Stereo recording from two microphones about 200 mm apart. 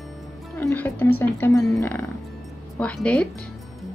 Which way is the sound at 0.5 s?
10° left (ahead or behind).